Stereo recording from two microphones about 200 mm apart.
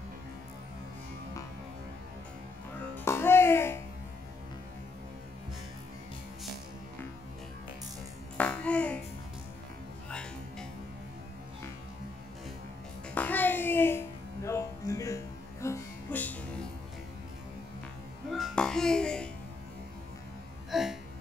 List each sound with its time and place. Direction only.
3.1 s music: 10° left (ahead or behind)
8.4 s music: 5° left (ahead or behind)
10.0 s music: 5° left (ahead or behind)
13.1 s music: 10° left (ahead or behind)
18.3 s a sound: centre (ahead or behind)
20.7 s hiccup: centre (ahead or behind)